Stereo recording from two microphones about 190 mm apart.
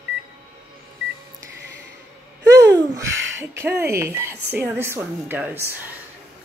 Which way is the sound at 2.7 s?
15° right (ahead or behind).